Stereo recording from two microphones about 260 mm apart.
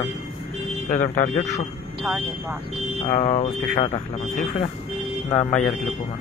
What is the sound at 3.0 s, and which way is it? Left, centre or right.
Speech, left.